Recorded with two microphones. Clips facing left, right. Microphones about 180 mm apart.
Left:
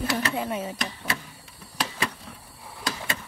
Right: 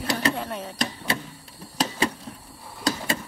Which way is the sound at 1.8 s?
35° right (ahead or behind).